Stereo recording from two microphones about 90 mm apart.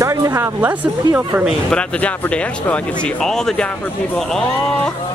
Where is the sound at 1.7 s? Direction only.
15° left (ahead or behind).